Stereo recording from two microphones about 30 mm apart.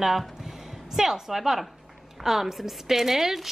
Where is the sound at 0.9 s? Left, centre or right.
Centre.